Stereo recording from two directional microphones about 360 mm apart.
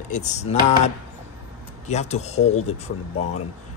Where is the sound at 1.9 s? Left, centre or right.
Centre.